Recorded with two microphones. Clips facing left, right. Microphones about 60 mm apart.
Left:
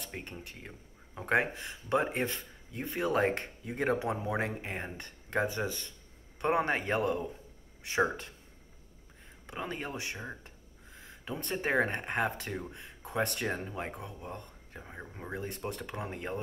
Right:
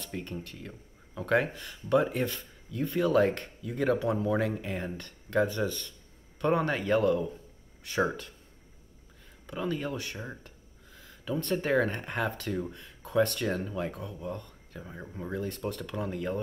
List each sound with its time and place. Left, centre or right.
0.1 s speech: left
9.5 s speech: left
10.4 s speech: left